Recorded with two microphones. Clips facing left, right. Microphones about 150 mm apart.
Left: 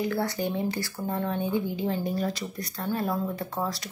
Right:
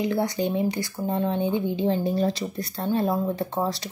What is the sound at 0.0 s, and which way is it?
A woman's voice, 20° right (ahead or behind).